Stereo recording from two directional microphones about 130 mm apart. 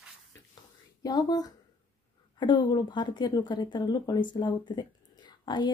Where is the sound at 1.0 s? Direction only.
30° left (ahead or behind).